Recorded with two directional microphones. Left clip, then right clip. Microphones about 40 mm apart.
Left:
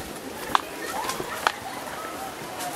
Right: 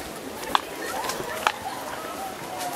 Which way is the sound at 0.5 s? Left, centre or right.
Right.